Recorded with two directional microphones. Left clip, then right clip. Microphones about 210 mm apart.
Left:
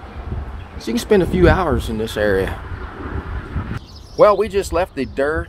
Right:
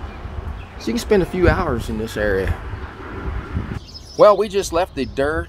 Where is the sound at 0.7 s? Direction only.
10° left (ahead or behind).